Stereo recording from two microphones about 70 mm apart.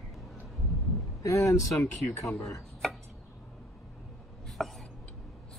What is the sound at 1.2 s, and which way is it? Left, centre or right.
Speech, left.